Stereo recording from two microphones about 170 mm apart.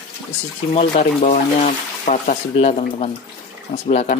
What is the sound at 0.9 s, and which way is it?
Speech, 50° left (ahead or behind).